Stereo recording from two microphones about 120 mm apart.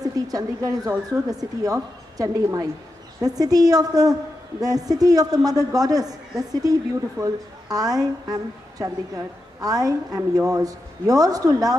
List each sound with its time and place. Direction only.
0.0 s a woman's voice: 30° right (ahead or behind)